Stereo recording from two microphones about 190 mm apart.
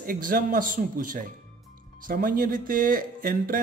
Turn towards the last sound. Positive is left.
turn(degrees=-50)  # may be behind; listen again after turning